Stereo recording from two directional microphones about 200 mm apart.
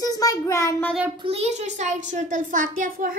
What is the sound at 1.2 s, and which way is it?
A child's voice, 30° right (ahead or behind).